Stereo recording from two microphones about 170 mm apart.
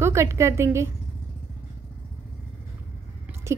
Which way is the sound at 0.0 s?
15° right (ahead or behind).